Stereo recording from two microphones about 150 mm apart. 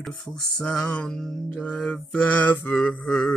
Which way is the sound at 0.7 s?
5° left (ahead or behind).